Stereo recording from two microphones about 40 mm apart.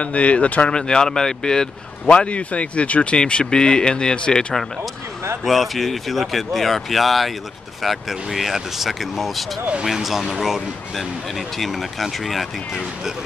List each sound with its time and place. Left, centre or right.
0.0 s speech: left
0.7 s speech: left
2.0 s speech: left
5.4 s speech: centre